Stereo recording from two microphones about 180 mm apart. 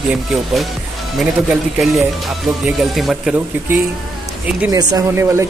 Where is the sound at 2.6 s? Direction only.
Centre (ahead or behind).